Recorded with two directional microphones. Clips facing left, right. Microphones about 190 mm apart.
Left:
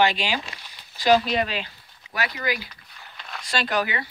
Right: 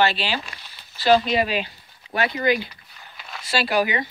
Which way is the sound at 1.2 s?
5° right (ahead or behind).